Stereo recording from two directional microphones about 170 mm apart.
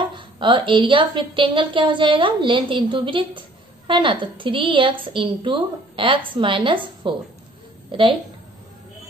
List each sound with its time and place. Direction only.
0.0 s a woman's voice: 30° right (ahead or behind)